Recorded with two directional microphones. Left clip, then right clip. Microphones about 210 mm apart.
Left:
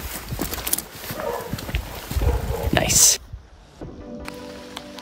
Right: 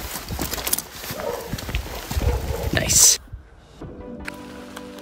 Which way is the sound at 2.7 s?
25° left (ahead or behind).